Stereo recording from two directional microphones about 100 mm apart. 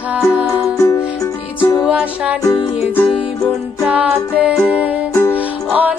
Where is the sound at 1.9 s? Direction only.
15° right (ahead or behind).